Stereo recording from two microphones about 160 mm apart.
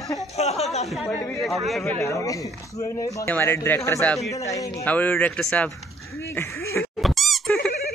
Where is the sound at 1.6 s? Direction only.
Centre (ahead or behind).